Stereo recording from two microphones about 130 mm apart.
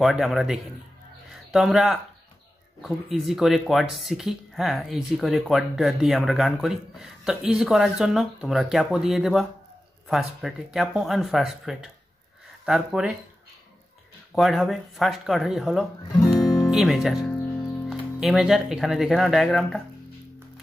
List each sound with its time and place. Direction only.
0.0 s speech: centre (ahead or behind)
14.3 s speech: centre (ahead or behind)
16.3 s music: 25° left (ahead or behind)
16.7 s speech: centre (ahead or behind)
17.3 s music: 15° left (ahead or behind)
17.8 s speech: centre (ahead or behind)